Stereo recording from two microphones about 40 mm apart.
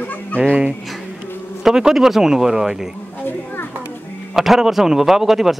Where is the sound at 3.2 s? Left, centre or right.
Left.